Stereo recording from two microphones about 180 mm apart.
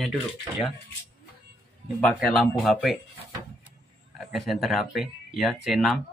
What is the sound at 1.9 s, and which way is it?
Speech, 5° left (ahead or behind).